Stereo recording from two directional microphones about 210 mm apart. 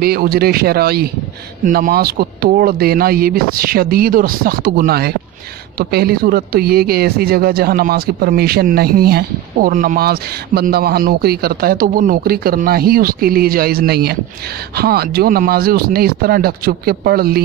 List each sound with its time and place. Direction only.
0.0 s speech: 45° right (ahead or behind)